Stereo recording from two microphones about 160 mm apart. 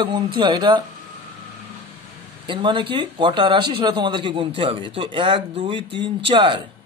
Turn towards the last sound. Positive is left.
turn(degrees=-30)  # may be behind; listen again after turning